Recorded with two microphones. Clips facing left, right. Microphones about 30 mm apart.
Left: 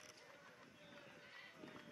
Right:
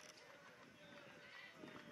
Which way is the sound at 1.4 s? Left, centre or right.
Centre.